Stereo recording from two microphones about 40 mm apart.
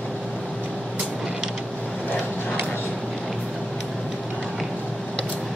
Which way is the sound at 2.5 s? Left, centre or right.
Left.